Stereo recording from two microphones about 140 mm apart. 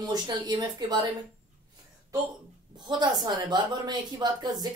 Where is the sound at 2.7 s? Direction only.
30° right (ahead or behind).